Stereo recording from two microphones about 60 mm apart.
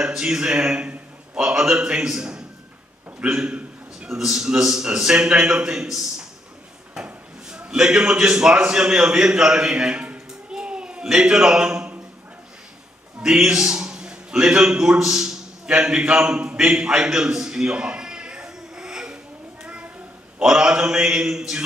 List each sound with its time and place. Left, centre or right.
0.0 s a man's voice: centre
7.4 s a man's voice: centre
10.5 s a sound: centre
13.2 s a man's voice: centre
19.6 s a sound: centre
20.3 s a man's voice: centre